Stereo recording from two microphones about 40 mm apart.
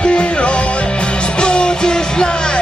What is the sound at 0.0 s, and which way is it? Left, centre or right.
Music, left.